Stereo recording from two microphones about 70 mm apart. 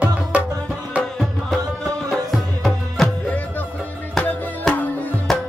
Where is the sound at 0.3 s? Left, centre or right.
Centre.